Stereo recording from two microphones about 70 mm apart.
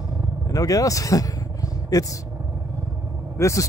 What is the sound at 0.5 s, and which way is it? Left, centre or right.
Vehicle, left.